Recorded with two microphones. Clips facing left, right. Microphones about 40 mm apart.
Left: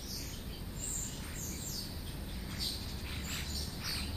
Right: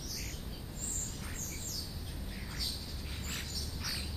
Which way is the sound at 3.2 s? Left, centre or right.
Centre.